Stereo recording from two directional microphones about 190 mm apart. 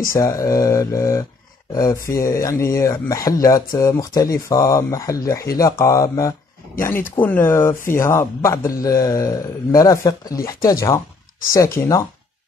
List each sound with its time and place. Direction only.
0.1 s speech: 15° left (ahead or behind)